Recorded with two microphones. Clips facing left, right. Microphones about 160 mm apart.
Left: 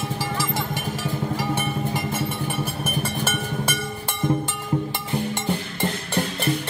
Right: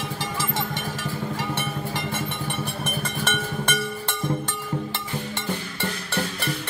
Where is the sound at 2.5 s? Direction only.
5° left (ahead or behind).